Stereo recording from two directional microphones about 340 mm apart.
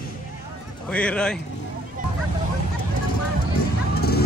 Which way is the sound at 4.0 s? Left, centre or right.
Left.